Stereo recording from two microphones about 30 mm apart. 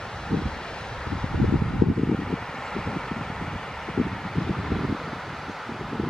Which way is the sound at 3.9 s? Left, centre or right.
Centre.